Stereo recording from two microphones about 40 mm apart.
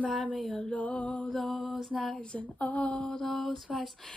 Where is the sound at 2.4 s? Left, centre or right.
Left.